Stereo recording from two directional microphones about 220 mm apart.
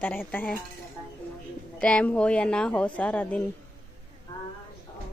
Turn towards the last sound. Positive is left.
turn(degrees=5)  # may be behind; listen again after turning